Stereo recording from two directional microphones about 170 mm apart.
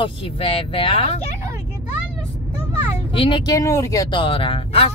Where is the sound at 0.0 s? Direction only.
30° left (ahead or behind).